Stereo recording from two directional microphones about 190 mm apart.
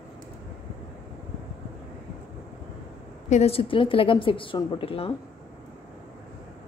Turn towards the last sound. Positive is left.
turn(degrees=30)  # may be behind; listen again after turning